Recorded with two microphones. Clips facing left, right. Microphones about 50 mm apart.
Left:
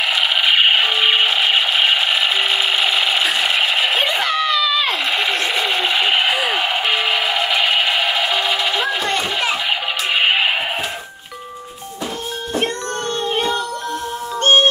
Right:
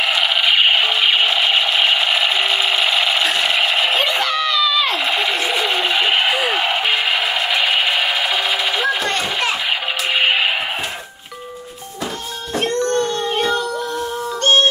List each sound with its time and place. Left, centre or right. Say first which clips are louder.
0.0 s music: even; centre
4.1 s screaming: even; centre
4.9 s a sound: even; centre